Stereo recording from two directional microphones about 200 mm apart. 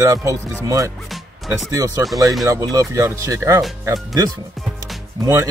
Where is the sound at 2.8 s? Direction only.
15° right (ahead or behind).